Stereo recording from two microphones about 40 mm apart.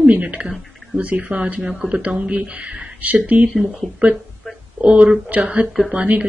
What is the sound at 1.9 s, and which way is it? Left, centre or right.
Speech, right.